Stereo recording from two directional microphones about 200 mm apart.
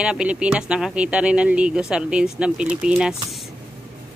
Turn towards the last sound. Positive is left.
turn(degrees=-5)  # may be behind; listen again after turning